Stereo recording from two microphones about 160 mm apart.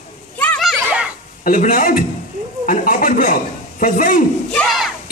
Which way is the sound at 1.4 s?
55° left (ahead or behind).